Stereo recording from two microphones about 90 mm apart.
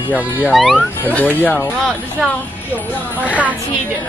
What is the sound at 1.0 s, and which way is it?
Speech, 15° left (ahead or behind).